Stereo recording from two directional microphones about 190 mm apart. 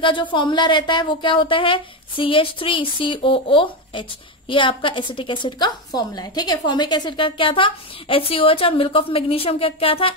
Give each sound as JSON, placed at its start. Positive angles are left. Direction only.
{"t": 0.0, "sound": "a woman's voice", "side_deg": 25}